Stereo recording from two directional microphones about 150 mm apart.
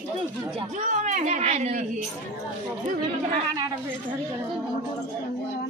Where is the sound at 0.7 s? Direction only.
55° right (ahead or behind).